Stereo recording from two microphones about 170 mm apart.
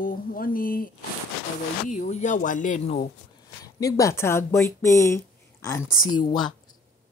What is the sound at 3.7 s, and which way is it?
Speech, 20° left (ahead or behind).